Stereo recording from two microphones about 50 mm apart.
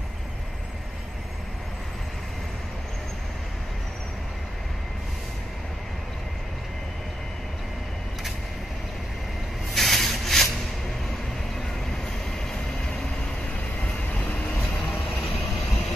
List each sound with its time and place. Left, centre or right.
9.8 s a sound: centre
14.1 s vehicle: left
14.8 s vehicle: centre